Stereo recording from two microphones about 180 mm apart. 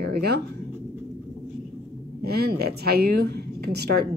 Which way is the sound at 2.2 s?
60° right (ahead or behind).